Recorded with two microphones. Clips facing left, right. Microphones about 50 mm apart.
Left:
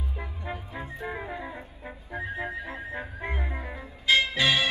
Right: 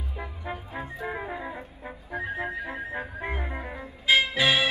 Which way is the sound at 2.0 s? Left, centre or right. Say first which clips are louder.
Right 2 dB; right.